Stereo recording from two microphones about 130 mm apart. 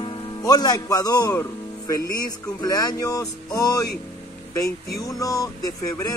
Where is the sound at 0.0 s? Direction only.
35° left (ahead or behind).